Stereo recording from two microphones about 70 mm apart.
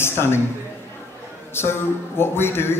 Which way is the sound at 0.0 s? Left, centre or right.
Left.